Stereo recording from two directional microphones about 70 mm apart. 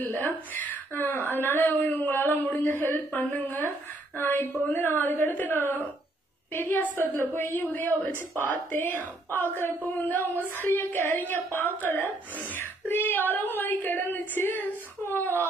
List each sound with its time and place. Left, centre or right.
0.0 s a woman's voice: left